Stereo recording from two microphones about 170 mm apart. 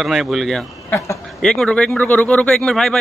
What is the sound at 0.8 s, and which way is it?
Speech, 15° left (ahead or behind).